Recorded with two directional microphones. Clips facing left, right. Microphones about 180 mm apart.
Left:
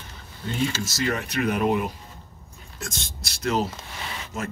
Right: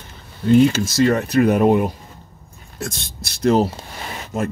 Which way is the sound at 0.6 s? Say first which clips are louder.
Right 10 dB; 60° right (ahead or behind).